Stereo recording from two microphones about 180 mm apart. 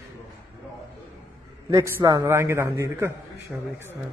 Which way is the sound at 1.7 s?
15° right (ahead or behind).